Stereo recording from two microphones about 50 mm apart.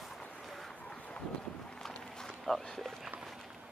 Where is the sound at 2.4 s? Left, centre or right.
Centre.